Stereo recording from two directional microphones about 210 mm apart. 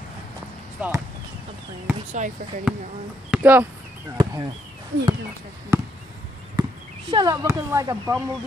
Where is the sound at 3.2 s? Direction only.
10° right (ahead or behind).